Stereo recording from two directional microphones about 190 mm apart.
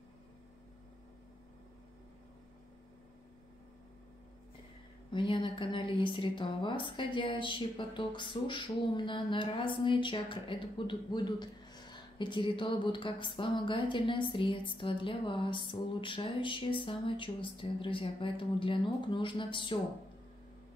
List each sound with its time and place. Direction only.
5.1 s a woman's voice: 25° left (ahead or behind)